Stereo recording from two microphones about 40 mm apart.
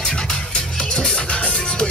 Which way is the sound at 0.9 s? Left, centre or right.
Left.